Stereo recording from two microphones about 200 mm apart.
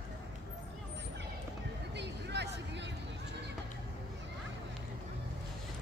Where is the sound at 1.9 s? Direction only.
60° right (ahead or behind).